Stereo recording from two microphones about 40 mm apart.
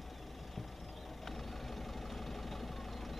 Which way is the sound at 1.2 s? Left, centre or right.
Centre.